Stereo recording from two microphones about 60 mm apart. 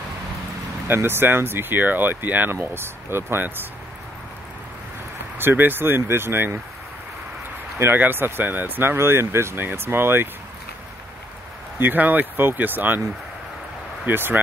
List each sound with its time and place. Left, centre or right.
0.8 s speech: right
2.5 s speech: right
5.4 s speech: right
7.8 s speech: right
11.8 s speech: right
14.0 s speech: right